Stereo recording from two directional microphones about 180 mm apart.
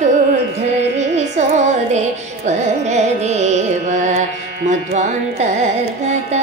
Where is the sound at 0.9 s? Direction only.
40° right (ahead or behind).